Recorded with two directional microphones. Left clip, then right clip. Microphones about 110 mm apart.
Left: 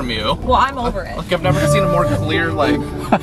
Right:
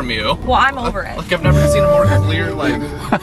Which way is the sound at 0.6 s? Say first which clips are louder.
Right 2 dB; 15° right (ahead or behind).